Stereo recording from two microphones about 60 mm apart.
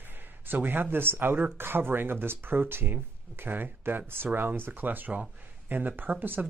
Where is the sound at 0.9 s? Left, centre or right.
Right.